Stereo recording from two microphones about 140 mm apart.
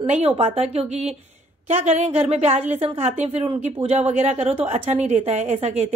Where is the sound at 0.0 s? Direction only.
45° right (ahead or behind).